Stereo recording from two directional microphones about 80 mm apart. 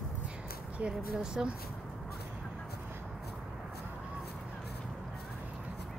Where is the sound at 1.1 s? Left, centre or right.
Centre.